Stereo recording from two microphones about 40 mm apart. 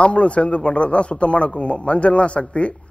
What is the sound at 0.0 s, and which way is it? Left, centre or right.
Speech, left.